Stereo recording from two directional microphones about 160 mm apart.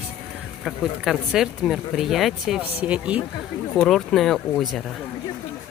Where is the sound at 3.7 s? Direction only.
5° left (ahead or behind).